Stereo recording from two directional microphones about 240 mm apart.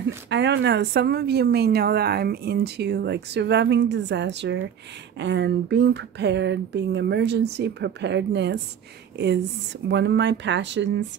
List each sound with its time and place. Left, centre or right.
0.0 s speech: right
9.8 s speech: right